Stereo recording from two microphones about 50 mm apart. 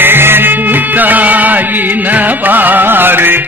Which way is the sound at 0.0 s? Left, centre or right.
Right.